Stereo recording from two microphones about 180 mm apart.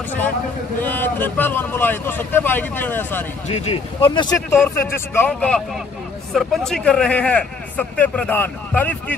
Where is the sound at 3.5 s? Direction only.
35° left (ahead or behind).